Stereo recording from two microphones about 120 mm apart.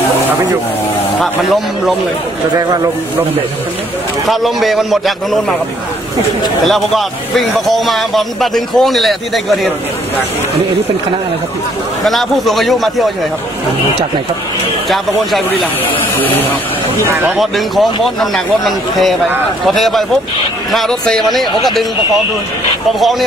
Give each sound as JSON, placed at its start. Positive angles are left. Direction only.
{"t": 1.2, "sound": "a man's voice", "side_deg": 0}
{"t": 4.3, "sound": "a man's voice", "side_deg": 0}
{"t": 6.6, "sound": "a man's voice", "side_deg": 0}
{"t": 12.0, "sound": "a man's voice", "side_deg": 0}
{"t": 17.0, "sound": "speech", "side_deg": -20}
{"t": 17.4, "sound": "a man's voice", "side_deg": 0}